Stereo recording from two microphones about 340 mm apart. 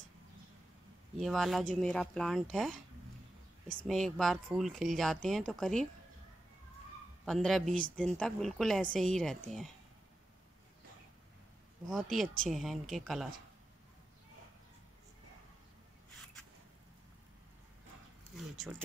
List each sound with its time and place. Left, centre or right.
1.1 s speech: centre
3.8 s speech: centre
7.2 s speech: centre
7.6 s speech: right
8.2 s speech: centre
11.9 s speech: centre
18.3 s speech: centre